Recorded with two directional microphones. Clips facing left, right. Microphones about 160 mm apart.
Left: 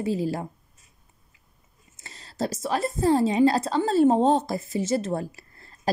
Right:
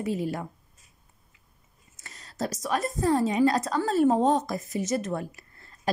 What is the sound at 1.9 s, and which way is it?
A woman's voice, 30° left (ahead or behind).